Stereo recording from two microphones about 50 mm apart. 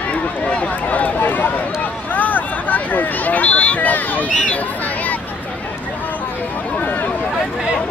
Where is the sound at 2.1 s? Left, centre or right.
Left.